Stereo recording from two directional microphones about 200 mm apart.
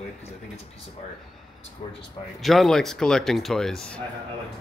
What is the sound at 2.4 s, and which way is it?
Speech, centre (ahead or behind).